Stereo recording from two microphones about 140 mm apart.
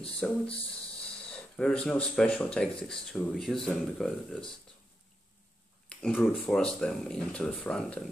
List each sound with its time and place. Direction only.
0.2 s speech: 5° left (ahead or behind)
5.9 s speech: 5° left (ahead or behind)